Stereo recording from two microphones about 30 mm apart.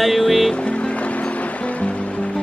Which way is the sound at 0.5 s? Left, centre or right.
Left.